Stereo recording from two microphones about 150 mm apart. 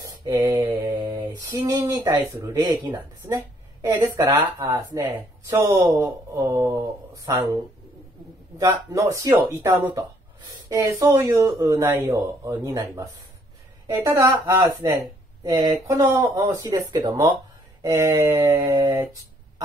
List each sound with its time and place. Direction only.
0.2 s mantra: 25° right (ahead or behind)
2.4 s speech: 30° right (ahead or behind)
3.8 s speech: 20° right (ahead or behind)
8.9 s speech: 20° right (ahead or behind)